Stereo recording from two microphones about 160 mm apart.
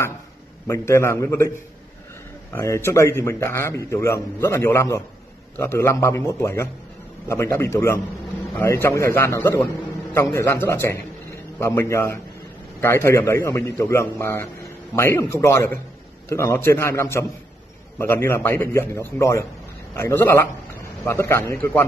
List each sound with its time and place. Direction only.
0.7 s a man's voice: 15° left (ahead or behind)
2.5 s a man's voice: 15° left (ahead or behind)